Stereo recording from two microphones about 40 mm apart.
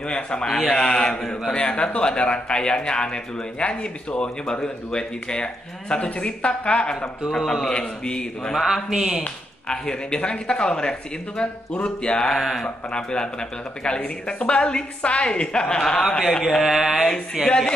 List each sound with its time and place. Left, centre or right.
0.1 s a man's voice: left
7.2 s a man's voice: centre
8.6 s a man's voice: centre
9.2 s a man's voice: left
12.4 s mantra: centre
12.6 s a man's voice: left
16.3 s mantra: centre
16.6 s a man's voice: centre